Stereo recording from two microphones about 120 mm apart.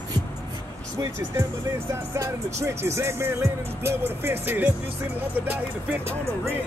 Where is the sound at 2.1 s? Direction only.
25° right (ahead or behind).